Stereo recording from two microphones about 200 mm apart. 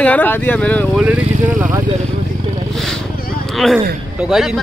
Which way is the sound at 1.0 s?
10° right (ahead or behind).